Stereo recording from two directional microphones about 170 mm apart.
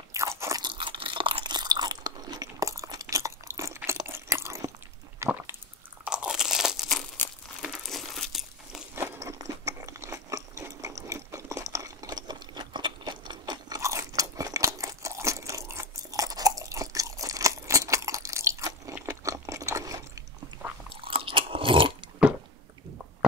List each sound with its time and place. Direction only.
0.1 s crunch: 15° right (ahead or behind)
5.2 s squish: 15° right (ahead or behind)
6.0 s crunch: 5° right (ahead or behind)
7.6 s crumpling: centre (ahead or behind)
8.9 s crunch: 15° right (ahead or behind)
11.1 s a sound: 20° right (ahead or behind)
20.9 s chewing: 30° right (ahead or behind)